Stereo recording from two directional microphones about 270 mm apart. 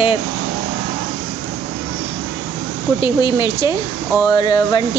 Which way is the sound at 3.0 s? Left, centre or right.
Centre.